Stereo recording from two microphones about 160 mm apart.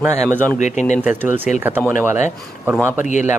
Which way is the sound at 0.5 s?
50° left (ahead or behind).